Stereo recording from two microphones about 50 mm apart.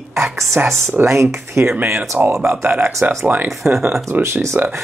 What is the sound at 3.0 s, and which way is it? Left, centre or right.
Speech, right.